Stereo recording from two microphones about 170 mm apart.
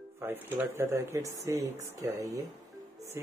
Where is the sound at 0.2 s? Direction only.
10° right (ahead or behind).